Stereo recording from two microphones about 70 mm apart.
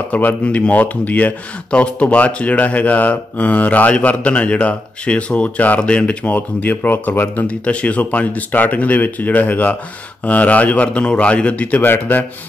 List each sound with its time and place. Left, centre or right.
0.1 s speech: left